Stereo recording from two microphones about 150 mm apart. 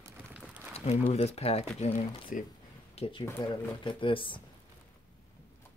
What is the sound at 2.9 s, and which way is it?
Speech, 40° left (ahead or behind).